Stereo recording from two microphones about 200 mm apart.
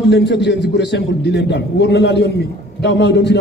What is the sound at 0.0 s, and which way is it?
A man's voice, 60° left (ahead or behind).